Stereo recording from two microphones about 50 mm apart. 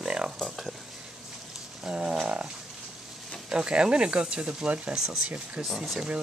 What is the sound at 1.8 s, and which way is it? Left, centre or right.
Speech, right.